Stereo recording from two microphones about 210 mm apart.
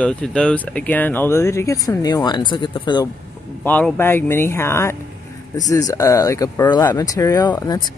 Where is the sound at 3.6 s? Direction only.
10° left (ahead or behind).